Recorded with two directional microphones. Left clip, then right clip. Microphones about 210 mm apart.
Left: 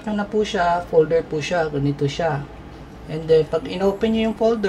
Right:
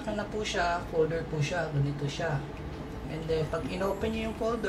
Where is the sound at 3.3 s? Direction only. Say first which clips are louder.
Left 14 dB; 50° left (ahead or behind).